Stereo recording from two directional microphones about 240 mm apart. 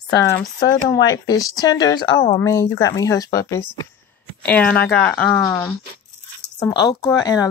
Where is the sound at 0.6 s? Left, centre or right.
Centre.